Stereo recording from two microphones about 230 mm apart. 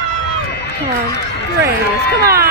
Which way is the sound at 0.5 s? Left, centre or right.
Left.